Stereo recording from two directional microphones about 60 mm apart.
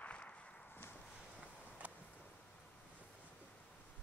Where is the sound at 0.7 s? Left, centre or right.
Left.